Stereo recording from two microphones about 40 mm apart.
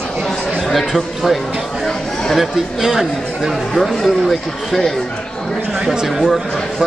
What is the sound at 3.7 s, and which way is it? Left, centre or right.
A man's voice, centre.